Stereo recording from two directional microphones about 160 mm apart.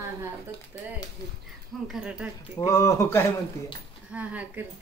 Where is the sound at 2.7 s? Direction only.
20° left (ahead or behind).